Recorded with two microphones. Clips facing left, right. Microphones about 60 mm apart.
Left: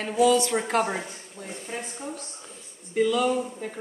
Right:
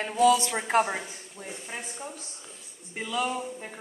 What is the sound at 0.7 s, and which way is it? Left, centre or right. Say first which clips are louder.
A woman's voice: even; centre.